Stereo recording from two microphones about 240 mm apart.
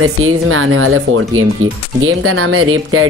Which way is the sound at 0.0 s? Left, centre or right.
Right.